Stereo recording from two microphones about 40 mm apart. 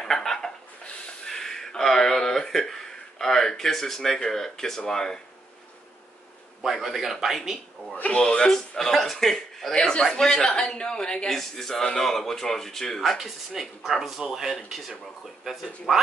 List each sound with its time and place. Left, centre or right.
0.0 s a sound: centre
1.2 s speech: centre
6.6 s speech: centre
7.9 s speech: left
8.2 s speech: centre
11.2 s speech: centre
13.2 s speech: centre